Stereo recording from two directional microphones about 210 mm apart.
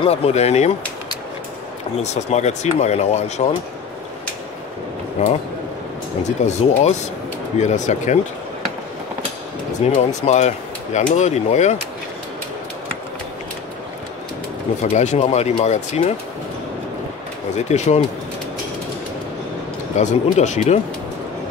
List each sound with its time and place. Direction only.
0.0 s speech: 30° left (ahead or behind)
2.0 s speech: 35° left (ahead or behind)
5.2 s speech: 35° left (ahead or behind)
9.8 s speech: 30° left (ahead or behind)
14.8 s speech: 35° left (ahead or behind)
17.6 s speech: 30° left (ahead or behind)
20.0 s speech: 35° left (ahead or behind)